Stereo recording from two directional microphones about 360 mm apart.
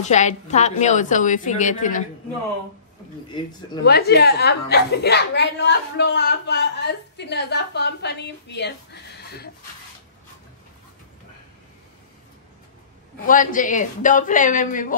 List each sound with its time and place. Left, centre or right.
0.0 s a woman's voice: centre
3.8 s a woman's voice: left
13.3 s a woman's voice: left